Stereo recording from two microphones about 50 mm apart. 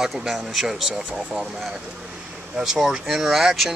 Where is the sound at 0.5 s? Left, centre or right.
Centre.